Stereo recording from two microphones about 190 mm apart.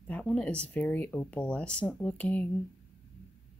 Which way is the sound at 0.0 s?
5° left (ahead or behind).